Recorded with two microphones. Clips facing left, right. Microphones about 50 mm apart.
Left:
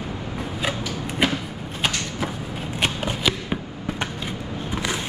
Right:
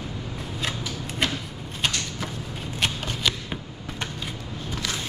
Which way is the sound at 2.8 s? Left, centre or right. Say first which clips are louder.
Left 3 dB; centre.